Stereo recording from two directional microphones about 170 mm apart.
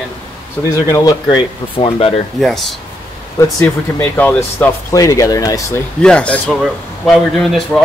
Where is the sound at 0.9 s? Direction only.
25° left (ahead or behind).